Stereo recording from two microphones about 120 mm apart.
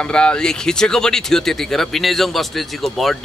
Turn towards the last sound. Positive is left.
turn(degrees=0)  # may be behind; listen again after turning